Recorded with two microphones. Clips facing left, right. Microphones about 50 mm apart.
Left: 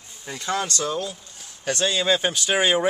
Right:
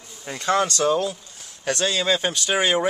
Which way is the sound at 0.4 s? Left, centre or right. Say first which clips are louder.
Right 5 dB; right.